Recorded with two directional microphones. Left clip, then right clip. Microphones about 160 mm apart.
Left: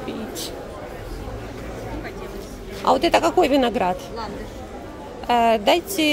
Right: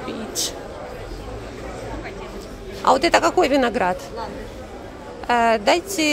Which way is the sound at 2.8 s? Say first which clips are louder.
Right 1 dB; 15° left (ahead or behind).